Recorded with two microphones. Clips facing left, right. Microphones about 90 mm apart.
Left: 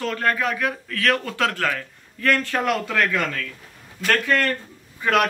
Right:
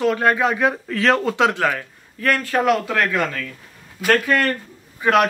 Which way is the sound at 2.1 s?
5° right (ahead or behind).